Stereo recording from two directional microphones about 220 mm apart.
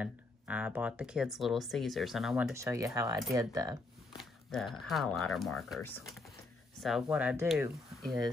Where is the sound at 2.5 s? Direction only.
15° right (ahead or behind).